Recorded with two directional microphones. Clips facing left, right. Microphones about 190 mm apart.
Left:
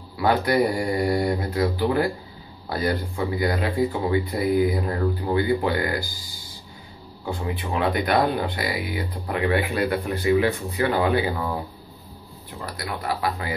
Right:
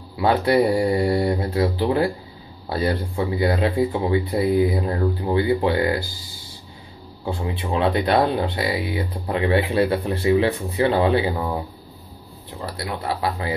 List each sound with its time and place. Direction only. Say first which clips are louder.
0.2 s speech: right 2 dB; 25° right (ahead or behind)
7.2 s speech: right 2 dB; 25° right (ahead or behind)
12.6 s speech: right 2 dB; 30° right (ahead or behind)